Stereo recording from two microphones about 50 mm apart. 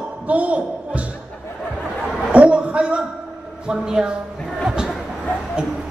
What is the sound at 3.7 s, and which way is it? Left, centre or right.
Speech, centre.